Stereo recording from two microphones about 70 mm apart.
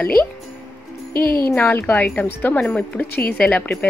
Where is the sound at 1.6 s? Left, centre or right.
Left.